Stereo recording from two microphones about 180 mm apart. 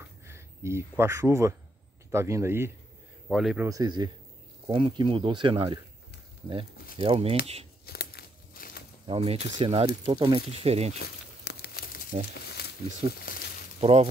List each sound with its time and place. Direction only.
0.0 s a sound: 15° right (ahead or behind)
2.0 s speech: 15° right (ahead or behind)
3.3 s speech: centre (ahead or behind)
3.6 s speech: 20° right (ahead or behind)
7.0 s speech: 35° right (ahead or behind)
7.8 s crumpling: 60° left (ahead or behind)
9.0 s speech: 30° right (ahead or behind)
11.0 s crumpling: 60° left (ahead or behind)
13.0 s speech: 30° right (ahead or behind)